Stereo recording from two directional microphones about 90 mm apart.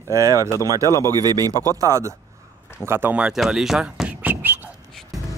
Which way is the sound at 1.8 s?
35° right (ahead or behind).